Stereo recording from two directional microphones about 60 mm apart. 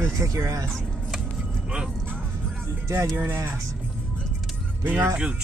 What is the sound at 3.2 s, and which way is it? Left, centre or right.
Speech, right.